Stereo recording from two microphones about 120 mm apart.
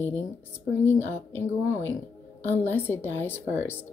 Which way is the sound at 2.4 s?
70° left (ahead or behind).